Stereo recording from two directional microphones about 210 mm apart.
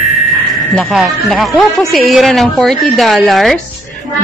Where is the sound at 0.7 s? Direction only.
Centre (ahead or behind).